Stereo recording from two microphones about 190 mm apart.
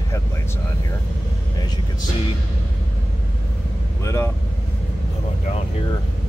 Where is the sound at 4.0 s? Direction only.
15° left (ahead or behind).